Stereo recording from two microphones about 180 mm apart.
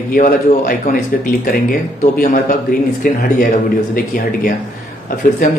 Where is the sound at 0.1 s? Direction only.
55° left (ahead or behind).